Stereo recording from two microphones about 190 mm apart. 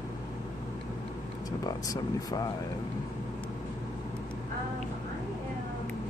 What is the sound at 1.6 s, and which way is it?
Speech, 20° left (ahead or behind).